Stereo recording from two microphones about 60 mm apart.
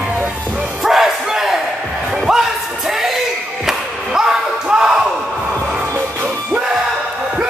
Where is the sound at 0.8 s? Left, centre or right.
Centre.